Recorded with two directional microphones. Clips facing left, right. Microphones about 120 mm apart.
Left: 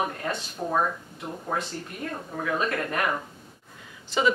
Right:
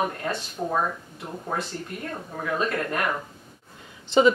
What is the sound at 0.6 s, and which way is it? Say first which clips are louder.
Speech: right 2 dB; 5° right (ahead or behind).